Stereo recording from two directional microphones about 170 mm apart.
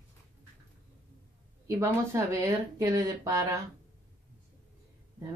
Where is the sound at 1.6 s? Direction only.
15° right (ahead or behind).